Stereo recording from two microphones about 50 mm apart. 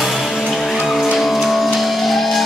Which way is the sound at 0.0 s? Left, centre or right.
Centre.